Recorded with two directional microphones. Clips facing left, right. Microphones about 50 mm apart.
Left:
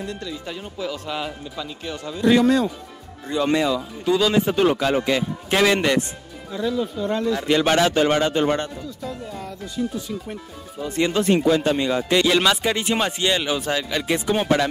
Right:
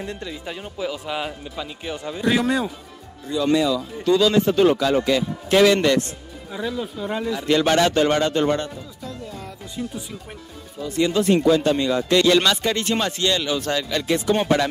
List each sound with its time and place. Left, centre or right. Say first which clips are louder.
0.0 s speech: even; right
2.2 s speech: left 4 dB; centre
3.3 s speech: right 1 dB; left
4.0 s speech: right 2 dB; centre
6.5 s speech: left 3 dB; centre
7.4 s speech: right 1 dB; centre
9.0 s music: left 2 dB; centre
10.8 s speech: right 1 dB; left
11.3 s speech: right 2 dB; centre
14.3 s speech: even; centre